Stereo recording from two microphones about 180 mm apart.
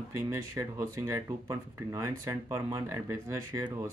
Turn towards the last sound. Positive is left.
turn(degrees=-15)  # may be behind; listen again after turning